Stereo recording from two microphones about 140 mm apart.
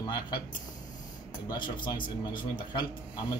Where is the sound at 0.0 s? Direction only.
30° left (ahead or behind).